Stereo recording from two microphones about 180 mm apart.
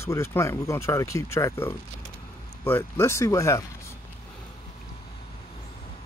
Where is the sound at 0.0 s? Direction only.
15° left (ahead or behind).